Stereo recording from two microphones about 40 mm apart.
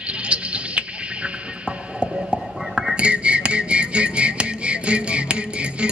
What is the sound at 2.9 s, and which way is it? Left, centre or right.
Music, right.